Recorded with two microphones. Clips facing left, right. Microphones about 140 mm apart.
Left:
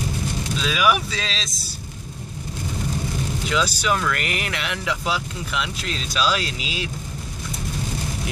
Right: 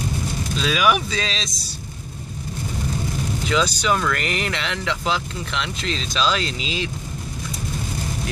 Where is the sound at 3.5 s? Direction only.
5° left (ahead or behind).